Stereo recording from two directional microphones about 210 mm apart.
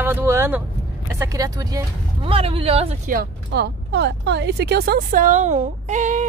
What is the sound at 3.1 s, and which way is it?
Speech, 50° right (ahead or behind).